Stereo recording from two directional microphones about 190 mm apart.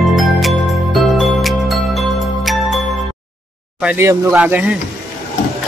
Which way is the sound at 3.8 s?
10° right (ahead or behind).